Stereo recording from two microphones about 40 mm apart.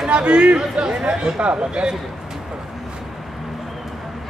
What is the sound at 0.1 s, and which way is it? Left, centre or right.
Speech, right.